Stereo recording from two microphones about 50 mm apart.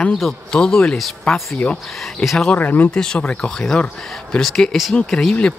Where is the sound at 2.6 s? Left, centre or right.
Left.